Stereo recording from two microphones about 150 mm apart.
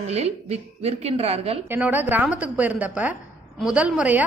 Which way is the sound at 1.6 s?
15° right (ahead or behind).